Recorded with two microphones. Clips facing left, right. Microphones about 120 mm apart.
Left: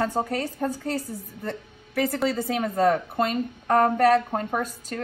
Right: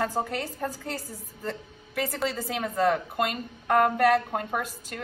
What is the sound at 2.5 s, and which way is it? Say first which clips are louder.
A woman's voice: left 2 dB; 30° left (ahead or behind).